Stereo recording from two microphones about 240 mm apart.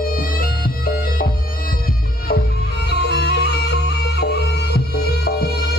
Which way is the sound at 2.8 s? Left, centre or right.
Left.